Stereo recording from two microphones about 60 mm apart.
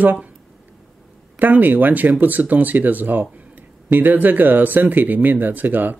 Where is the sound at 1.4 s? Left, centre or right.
Right.